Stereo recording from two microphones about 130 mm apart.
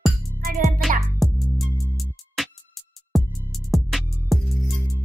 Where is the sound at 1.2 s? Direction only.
Centre (ahead or behind).